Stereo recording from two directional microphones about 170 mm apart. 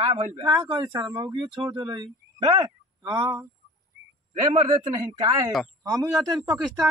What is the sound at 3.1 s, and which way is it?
Speech, 10° right (ahead or behind).